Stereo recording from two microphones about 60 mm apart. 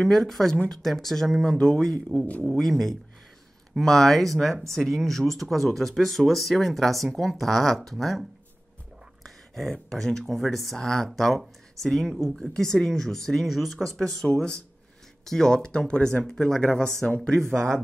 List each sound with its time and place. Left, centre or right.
0.0 s speech: centre
2.1 s speech: left
2.5 s speech: centre
15.2 s speech: centre